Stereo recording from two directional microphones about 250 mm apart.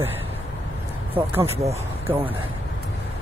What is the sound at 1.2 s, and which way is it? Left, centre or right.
Speech, right.